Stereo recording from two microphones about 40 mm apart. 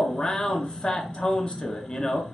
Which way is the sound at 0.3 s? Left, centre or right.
Centre.